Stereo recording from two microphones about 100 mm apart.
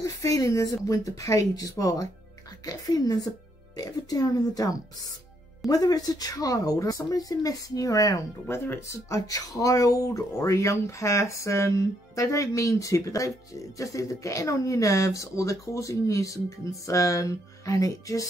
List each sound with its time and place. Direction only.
0.0 s speech: 35° left (ahead or behind)